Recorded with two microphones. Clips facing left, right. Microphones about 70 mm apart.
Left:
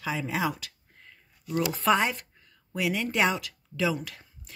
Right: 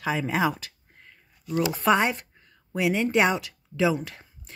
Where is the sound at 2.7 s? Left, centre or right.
Right.